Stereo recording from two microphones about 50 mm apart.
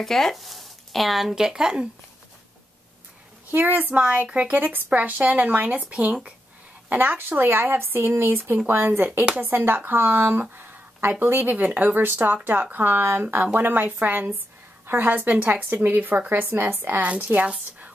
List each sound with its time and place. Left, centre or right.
0.0 s speech: centre
1.3 s speech: centre
3.5 s speech: right
4.3 s speech: right
4.6 s speech: right
11.4 s a woman's voice: right